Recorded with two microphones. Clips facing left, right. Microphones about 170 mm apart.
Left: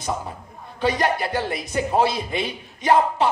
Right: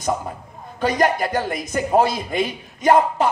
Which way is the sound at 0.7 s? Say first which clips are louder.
Right 3 dB; 45° right (ahead or behind).